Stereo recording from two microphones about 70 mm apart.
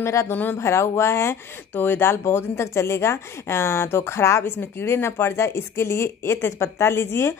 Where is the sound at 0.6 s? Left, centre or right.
Left.